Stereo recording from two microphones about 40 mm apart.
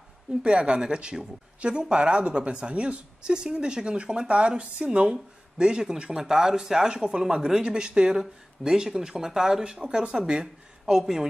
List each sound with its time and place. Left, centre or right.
0.4 s speech: right
5.1 s speech: centre